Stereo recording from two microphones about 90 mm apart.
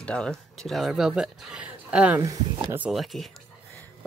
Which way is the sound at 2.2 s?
40° right (ahead or behind).